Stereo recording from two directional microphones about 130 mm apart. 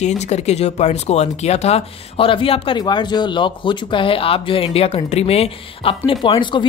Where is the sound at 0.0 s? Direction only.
60° left (ahead or behind).